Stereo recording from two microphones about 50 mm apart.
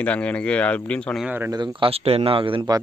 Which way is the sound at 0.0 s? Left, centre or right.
Left.